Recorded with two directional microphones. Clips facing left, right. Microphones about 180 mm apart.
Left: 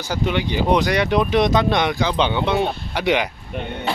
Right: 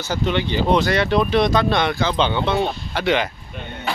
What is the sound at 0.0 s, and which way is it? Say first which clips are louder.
Speech: even; 10° left (ahead or behind).